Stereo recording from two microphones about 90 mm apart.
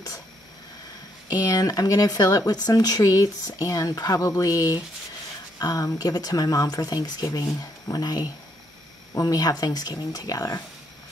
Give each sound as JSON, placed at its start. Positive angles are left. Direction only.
{"t": 1.3, "sound": "speech", "side_deg": 45}